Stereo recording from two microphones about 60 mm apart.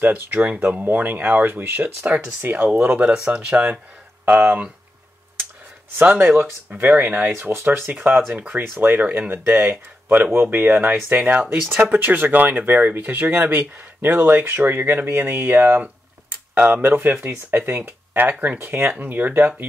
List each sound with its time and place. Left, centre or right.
0.0 s speech: right
5.9 s speech: right